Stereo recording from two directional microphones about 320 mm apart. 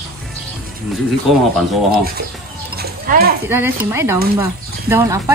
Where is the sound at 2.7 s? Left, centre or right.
Right.